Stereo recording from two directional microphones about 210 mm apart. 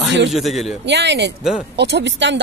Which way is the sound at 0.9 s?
55° right (ahead or behind).